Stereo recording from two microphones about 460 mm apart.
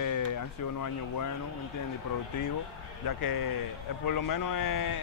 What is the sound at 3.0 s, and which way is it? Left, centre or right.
A man's voice, left.